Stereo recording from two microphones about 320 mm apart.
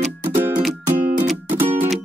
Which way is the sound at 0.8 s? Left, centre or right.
Centre.